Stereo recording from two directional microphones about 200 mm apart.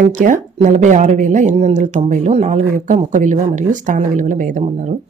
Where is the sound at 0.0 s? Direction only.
40° right (ahead or behind).